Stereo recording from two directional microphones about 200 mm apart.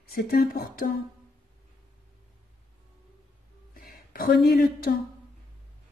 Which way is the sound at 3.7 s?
45° left (ahead or behind).